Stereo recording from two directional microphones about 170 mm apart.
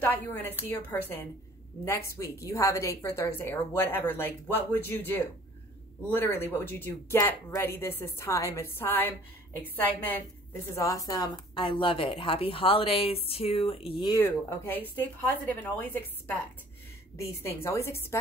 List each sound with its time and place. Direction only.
0.0 s a woman's voice: 10° left (ahead or behind); by 14.1 s 30° left (ahead or behind)
14.1 s a woman's voice: 15° left (ahead or behind)